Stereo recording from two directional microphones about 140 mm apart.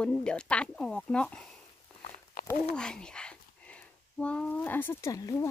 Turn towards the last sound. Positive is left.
turn(degrees=25)  # may be behind; listen again after turning